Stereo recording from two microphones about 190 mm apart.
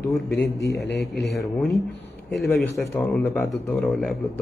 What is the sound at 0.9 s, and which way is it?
Speech, 60° left (ahead or behind).